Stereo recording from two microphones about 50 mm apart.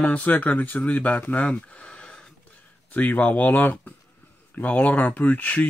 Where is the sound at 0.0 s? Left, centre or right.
Left.